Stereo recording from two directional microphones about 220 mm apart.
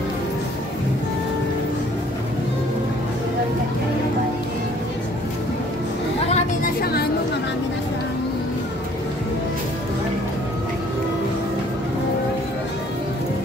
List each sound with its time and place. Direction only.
6.3 s chatter: 40° left (ahead or behind)